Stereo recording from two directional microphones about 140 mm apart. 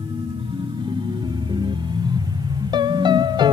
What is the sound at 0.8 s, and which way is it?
Music, 35° right (ahead or behind).